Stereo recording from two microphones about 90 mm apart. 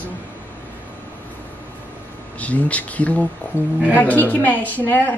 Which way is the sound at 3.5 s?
20° right (ahead or behind).